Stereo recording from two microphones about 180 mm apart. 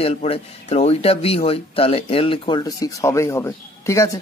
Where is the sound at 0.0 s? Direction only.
35° left (ahead or behind).